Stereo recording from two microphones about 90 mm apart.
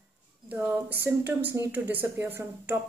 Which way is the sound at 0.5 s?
15° right (ahead or behind).